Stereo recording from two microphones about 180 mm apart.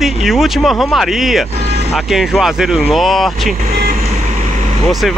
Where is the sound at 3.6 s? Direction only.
50° right (ahead or behind).